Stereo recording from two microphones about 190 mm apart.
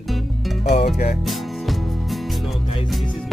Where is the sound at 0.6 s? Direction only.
35° left (ahead or behind).